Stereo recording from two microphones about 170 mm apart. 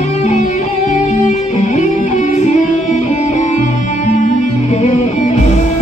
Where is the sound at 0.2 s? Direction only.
45° left (ahead or behind).